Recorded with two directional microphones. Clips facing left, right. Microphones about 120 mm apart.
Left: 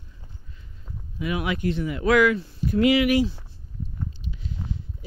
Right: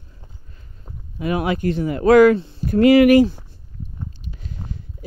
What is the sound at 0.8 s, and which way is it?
Speech, 40° right (ahead or behind).